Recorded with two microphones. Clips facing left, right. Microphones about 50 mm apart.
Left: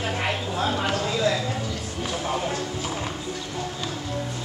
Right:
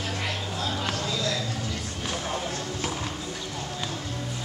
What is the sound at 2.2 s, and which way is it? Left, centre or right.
Music, centre.